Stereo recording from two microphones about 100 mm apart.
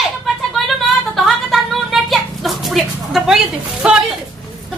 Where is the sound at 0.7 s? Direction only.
Centre (ahead or behind).